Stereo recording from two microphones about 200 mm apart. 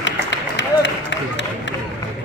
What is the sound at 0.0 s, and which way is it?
Run, 65° left (ahead or behind).